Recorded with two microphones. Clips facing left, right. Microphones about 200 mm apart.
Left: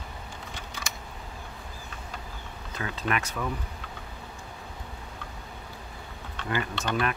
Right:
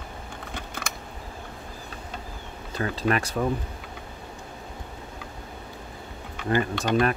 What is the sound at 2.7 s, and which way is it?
Speech, 35° right (ahead or behind).